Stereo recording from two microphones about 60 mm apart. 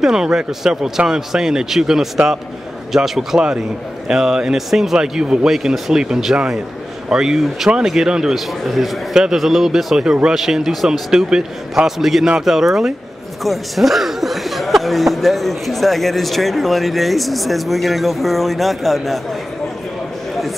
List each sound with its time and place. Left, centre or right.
0.0 s speech: centre